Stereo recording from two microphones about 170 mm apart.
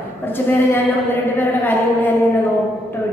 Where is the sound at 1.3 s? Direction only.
10° left (ahead or behind).